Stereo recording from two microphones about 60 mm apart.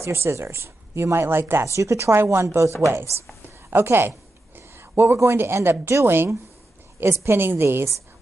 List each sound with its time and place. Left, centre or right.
0.0 s speech: right
1.7 s speech: right
2.4 s speech: right
3.4 s a sound: right
4.6 s a woman's voice: right